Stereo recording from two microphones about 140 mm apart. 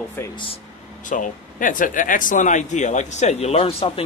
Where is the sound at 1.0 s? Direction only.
65° left (ahead or behind).